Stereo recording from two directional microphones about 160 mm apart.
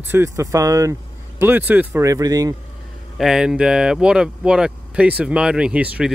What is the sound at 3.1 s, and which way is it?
Speech, 5° right (ahead or behind).